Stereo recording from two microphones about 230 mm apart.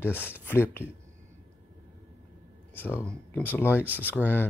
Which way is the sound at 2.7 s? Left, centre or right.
Centre.